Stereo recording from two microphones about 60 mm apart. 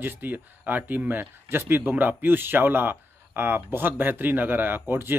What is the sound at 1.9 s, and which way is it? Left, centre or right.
Speech, right.